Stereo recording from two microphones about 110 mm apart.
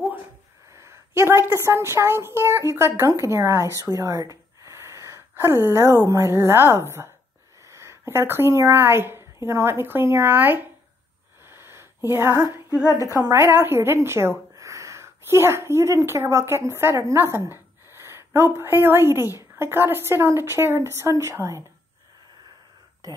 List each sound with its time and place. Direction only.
0.7 s a woman's voice: 25° right (ahead or behind)
3.7 s gasp: 30° right (ahead or behind)
6.0 s a woman's voice: 25° right (ahead or behind)
11.4 s a sound: 20° right (ahead or behind)
13.2 s a woman's voice: 25° right (ahead or behind)